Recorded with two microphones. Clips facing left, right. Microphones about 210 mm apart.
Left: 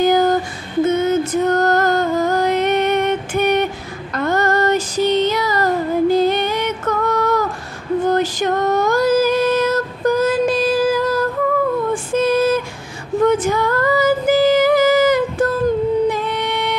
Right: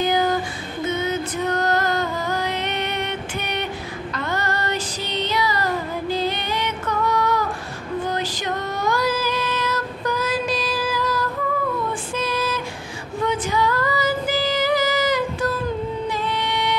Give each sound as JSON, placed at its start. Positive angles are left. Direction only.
{"t": 0.0, "sound": "female singing", "side_deg": 45}
{"t": 0.8, "sound": "music", "side_deg": 45}
{"t": 8.1, "sound": "female singing", "side_deg": 50}
{"t": 16.1, "sound": "music", "side_deg": 55}